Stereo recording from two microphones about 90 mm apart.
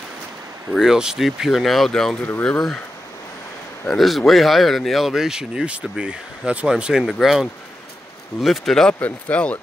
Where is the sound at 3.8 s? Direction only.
Centre (ahead or behind).